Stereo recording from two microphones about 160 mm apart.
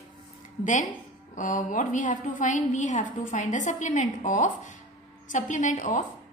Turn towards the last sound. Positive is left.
turn(degrees=55)  # may be behind; listen again after turning